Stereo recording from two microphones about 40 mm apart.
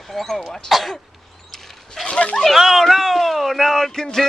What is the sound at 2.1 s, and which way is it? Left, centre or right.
Speech, left.